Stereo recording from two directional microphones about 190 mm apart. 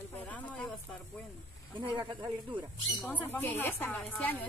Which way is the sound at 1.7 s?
25° right (ahead or behind).